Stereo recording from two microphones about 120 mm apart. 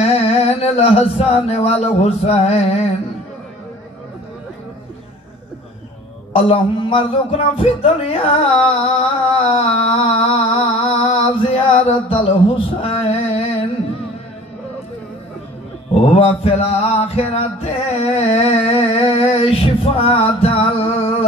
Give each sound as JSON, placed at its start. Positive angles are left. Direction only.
{"t": 0.0, "sound": "a sound", "side_deg": 55}
{"t": 6.3, "sound": "a man's voice", "side_deg": 50}
{"t": 9.5, "sound": "mantra", "side_deg": 55}
{"t": 15.9, "sound": "mantra", "side_deg": 60}